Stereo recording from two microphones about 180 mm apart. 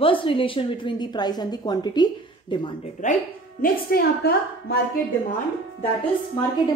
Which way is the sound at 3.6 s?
55° left (ahead or behind).